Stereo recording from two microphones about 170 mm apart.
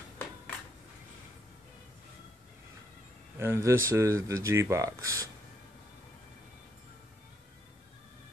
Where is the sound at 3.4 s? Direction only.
15° right (ahead or behind).